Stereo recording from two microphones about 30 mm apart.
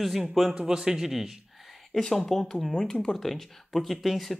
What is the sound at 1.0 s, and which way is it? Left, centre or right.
Speech, centre.